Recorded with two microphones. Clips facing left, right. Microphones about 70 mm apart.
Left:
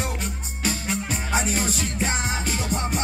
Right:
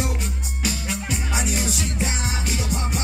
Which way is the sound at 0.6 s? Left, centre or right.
Left.